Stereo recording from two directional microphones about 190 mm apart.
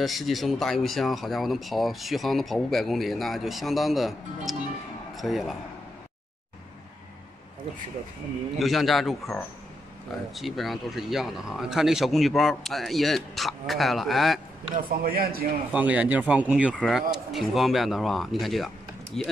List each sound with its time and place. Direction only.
0.0 s speech: centre (ahead or behind)
8.5 s speech: centre (ahead or behind)
15.0 s a man's voice: 50° right (ahead or behind)
15.7 s speech: 5° right (ahead or behind)